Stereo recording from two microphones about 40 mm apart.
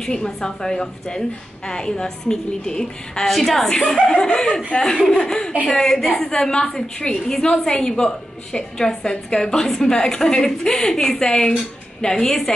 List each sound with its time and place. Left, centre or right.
0.0 s a woman's voice: centre
3.3 s a woman's voice: centre